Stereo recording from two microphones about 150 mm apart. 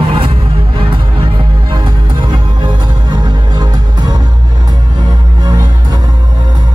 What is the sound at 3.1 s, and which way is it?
Music, 30° right (ahead or behind).